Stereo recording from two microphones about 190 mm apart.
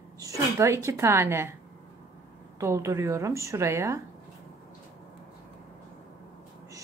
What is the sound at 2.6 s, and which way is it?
Speech, 15° right (ahead or behind).